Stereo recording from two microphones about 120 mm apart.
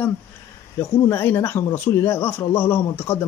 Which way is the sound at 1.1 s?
20° left (ahead or behind).